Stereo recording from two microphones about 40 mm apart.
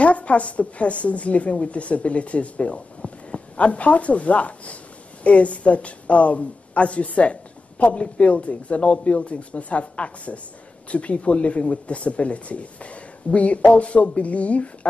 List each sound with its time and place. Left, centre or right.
0.0 s a woman's voice: left